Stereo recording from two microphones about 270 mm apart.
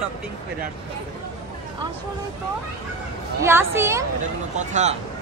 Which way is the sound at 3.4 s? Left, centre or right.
Centre.